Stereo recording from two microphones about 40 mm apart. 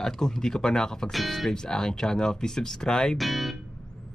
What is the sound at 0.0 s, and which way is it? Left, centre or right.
Speech, centre.